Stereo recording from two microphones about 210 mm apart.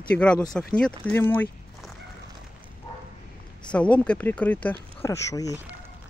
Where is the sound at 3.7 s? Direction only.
5° left (ahead or behind).